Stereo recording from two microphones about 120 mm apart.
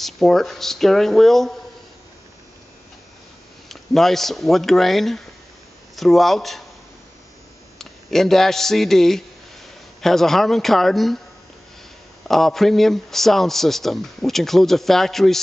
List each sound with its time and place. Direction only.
0.0 s a man's voice: centre (ahead or behind)
3.6 s a man's voice: centre (ahead or behind)
7.8 s a man's voice: 5° left (ahead or behind)
12.3 s a man's voice: centre (ahead or behind)